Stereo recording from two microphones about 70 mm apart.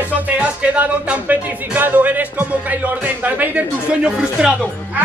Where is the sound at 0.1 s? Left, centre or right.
Centre.